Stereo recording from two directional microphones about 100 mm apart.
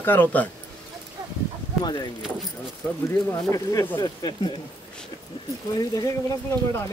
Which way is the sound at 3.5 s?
30° left (ahead or behind).